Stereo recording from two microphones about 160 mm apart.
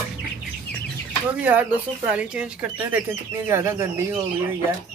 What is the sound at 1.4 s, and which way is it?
Speech, 10° right (ahead or behind).